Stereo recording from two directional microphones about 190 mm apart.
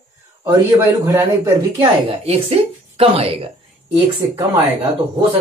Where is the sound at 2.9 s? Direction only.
30° right (ahead or behind).